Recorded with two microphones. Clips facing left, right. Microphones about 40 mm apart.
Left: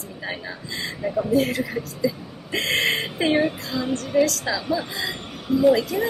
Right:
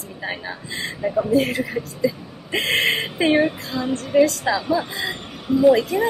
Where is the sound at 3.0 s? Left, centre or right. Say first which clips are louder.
Right 3 dB; right.